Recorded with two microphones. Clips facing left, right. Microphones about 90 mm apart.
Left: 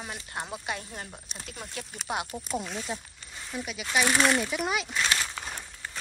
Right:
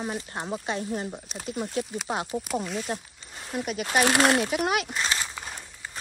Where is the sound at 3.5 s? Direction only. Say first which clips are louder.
Right 4 dB; 50° right (ahead or behind).